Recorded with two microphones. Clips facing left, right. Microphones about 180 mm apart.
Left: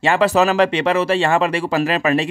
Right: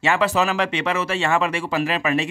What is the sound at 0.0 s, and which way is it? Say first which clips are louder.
Speech: left 5 dB; 35° left (ahead or behind).